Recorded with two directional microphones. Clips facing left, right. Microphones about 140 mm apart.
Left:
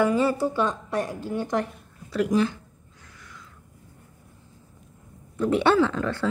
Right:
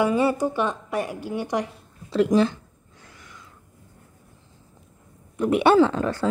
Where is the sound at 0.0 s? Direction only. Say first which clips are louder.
Right 1 dB; 15° right (ahead or behind).